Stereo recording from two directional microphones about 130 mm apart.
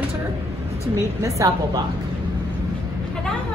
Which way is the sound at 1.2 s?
25° right (ahead or behind).